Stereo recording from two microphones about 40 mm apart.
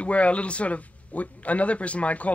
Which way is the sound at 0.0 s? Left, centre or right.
Left.